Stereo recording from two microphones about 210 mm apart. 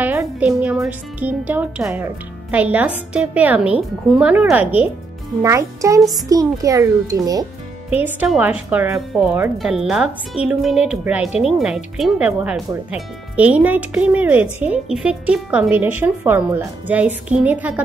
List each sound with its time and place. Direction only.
0.0 s speech: 10° right (ahead or behind)